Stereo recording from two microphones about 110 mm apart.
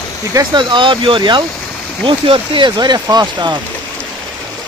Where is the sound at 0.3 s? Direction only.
35° right (ahead or behind).